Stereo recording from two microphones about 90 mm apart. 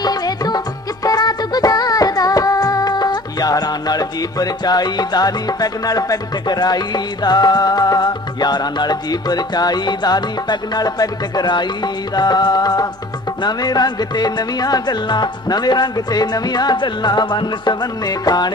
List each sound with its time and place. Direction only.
0.0 s music: 50° left (ahead or behind)